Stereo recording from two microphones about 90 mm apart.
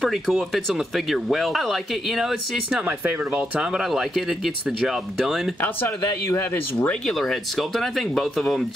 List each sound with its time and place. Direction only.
0.0 s speech: centre (ahead or behind)
3.0 s speech: 20° right (ahead or behind)
3.7 s speech: 5° right (ahead or behind)
6.2 s speech: 30° left (ahead or behind)
6.9 s speech: 5° left (ahead or behind)